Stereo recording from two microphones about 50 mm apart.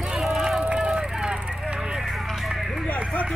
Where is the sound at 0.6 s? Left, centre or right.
Centre.